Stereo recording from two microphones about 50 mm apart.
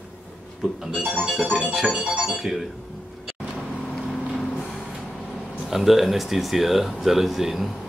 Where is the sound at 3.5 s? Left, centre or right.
Centre.